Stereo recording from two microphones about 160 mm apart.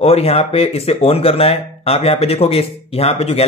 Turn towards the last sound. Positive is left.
turn(degrees=40)  # may be behind; listen again after turning